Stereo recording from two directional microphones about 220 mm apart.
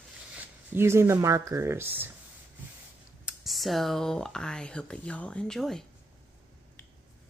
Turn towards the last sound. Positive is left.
turn(degrees=0)  # may be behind; listen again after turning